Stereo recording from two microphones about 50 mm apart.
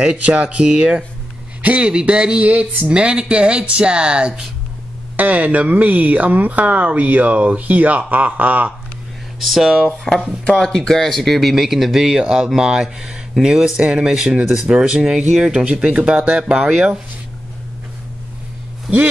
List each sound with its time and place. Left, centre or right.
0.0 s speech: right
5.1 s speech: right
9.4 s speech: centre; by 16.6 s right